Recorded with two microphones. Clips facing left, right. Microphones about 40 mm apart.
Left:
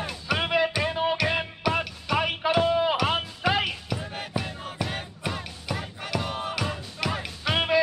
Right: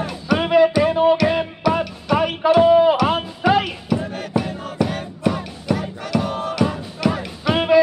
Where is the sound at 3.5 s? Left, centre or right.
Centre.